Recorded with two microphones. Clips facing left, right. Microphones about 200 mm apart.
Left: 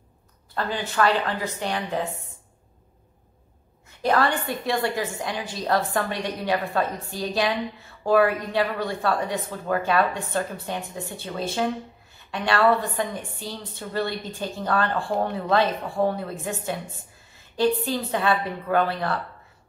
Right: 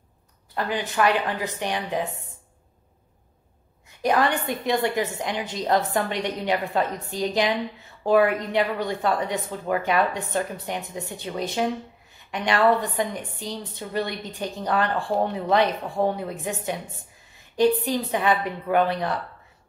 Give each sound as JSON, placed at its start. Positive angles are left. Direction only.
{"t": 0.6, "sound": "a woman's voice", "side_deg": -15}
{"t": 4.0, "sound": "a woman's voice", "side_deg": -15}